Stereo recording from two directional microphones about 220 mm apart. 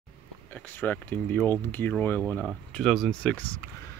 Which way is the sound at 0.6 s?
10° left (ahead or behind).